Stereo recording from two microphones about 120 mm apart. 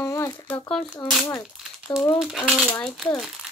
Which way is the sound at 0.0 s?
25° left (ahead or behind).